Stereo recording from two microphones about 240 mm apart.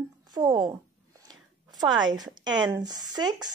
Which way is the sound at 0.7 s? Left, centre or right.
Centre.